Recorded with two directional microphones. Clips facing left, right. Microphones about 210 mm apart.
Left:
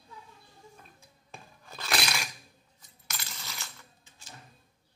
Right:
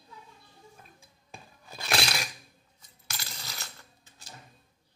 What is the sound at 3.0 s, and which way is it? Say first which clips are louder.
Coin: even; 35° right (ahead or behind).